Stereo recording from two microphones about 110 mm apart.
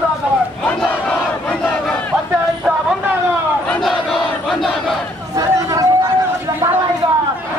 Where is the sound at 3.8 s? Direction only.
Centre (ahead or behind).